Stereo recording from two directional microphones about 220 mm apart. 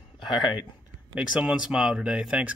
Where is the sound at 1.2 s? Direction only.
5° right (ahead or behind).